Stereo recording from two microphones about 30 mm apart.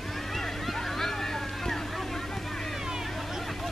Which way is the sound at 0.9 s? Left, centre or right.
Centre.